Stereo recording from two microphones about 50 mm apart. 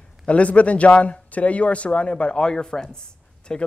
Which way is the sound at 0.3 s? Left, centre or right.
Left.